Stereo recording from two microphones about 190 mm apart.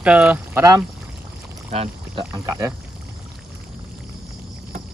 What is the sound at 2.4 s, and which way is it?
Speech, 15° right (ahead or behind).